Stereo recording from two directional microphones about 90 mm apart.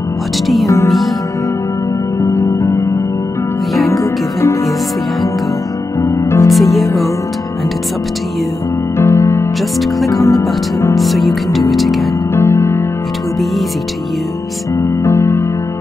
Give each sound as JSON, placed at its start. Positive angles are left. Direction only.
{"t": 0.8, "sound": "music", "side_deg": 0}
{"t": 2.2, "sound": "music", "side_deg": 30}
{"t": 3.9, "sound": "music", "side_deg": 35}
{"t": 5.9, "sound": "music", "side_deg": 35}
{"t": 6.5, "sound": "music", "side_deg": 0}
{"t": 8.9, "sound": "music", "side_deg": 30}
{"t": 9.6, "sound": "music", "side_deg": 0}
{"t": 12.4, "sound": "music", "side_deg": 30}
{"t": 14.8, "sound": "music", "side_deg": 30}